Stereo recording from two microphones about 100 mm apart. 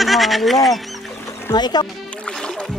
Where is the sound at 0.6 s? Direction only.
Centre (ahead or behind).